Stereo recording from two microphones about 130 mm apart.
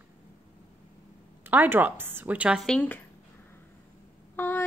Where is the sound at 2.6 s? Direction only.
10° left (ahead or behind).